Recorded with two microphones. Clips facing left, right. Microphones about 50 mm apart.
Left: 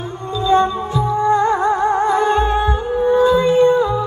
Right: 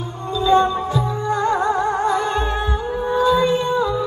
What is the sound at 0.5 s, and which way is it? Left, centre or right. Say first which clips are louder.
Music: left 1 dB; left.